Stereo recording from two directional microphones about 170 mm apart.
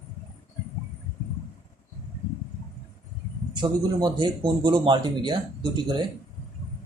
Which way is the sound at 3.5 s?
25° right (ahead or behind).